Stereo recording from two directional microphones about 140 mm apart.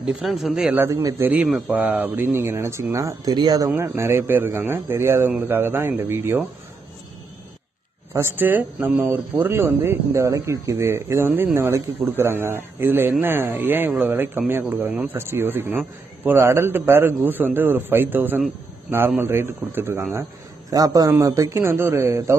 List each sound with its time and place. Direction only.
0.0 s speech: 5° right (ahead or behind)
0.7 s speech: 20° right (ahead or behind)
1.3 s speech: 10° right (ahead or behind)
8.1 s speech: 15° right (ahead or behind)